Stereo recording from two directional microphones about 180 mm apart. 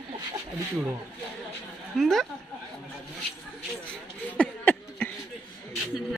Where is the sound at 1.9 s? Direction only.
Centre (ahead or behind).